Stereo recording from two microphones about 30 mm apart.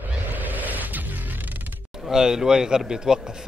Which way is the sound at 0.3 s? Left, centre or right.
Right.